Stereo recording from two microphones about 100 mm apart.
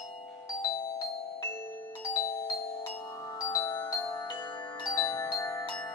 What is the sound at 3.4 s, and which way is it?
Music, 35° left (ahead or behind).